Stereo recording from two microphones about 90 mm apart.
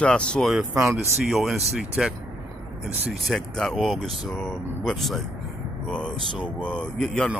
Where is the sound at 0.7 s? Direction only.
30° right (ahead or behind).